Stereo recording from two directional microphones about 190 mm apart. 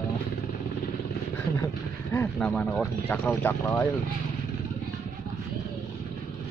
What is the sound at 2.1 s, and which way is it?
Speech, 10° left (ahead or behind).